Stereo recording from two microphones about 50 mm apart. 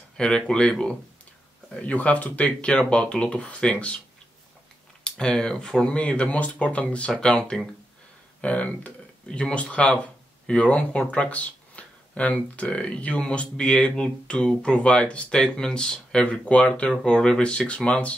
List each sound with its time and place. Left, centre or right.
0.5 s speech: centre
5.0 s speech: centre
8.4 s speech: left
16.3 s speech: left